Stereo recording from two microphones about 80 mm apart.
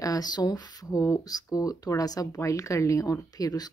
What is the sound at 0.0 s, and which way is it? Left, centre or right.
Speech, left.